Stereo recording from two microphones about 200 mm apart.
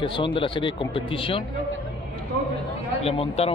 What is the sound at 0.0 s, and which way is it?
Speech, 25° left (ahead or behind).